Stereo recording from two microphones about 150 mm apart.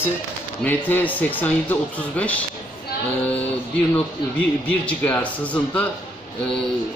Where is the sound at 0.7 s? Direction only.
10° left (ahead or behind).